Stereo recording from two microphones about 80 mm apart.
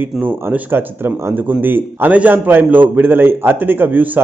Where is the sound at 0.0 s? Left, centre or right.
Right.